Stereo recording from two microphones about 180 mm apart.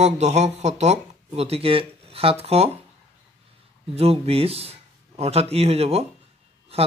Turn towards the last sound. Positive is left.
turn(degrees=-35)  # may be behind; listen again after turning